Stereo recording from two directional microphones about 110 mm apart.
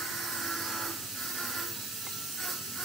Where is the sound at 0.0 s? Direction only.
Centre (ahead or behind).